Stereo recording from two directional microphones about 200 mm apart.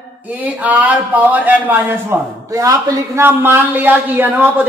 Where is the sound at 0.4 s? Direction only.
10° right (ahead or behind).